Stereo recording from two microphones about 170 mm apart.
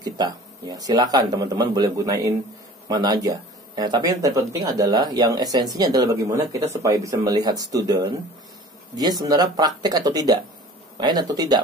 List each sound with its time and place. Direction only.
0.0 s speech: 25° right (ahead or behind)